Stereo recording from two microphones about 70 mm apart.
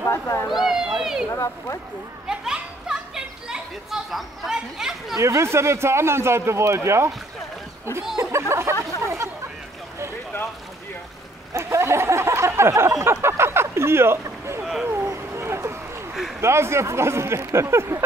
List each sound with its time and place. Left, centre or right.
0.0 s cat: left
0.5 s cat: centre
2.2 s children playing: centre
5.1 s speech: right
8.2 s speech: right
9.0 s chatter: right
11.5 s a sound: right
14.2 s rowboat: right
14.6 s a sound: centre
15.1 s a sound: right
16.3 s speech: right